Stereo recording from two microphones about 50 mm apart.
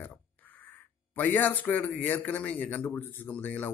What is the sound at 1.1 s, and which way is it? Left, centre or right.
Speech, left.